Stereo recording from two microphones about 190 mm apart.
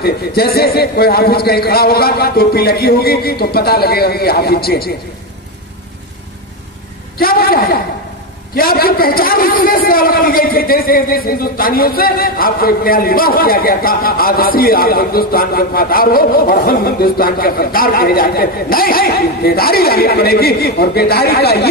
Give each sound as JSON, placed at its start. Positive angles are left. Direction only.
{"t": 0.0, "sound": "a man's voice", "side_deg": 55}
{"t": 7.2, "sound": "a sound", "side_deg": 50}
{"t": 8.5, "sound": "a man's voice", "side_deg": 50}